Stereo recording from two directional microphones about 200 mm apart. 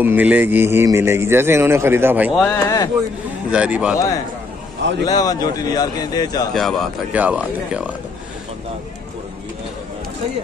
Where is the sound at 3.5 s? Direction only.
5° right (ahead or behind).